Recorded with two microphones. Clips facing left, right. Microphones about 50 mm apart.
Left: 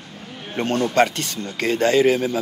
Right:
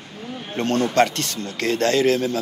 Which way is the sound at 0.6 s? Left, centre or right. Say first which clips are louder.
Even; centre.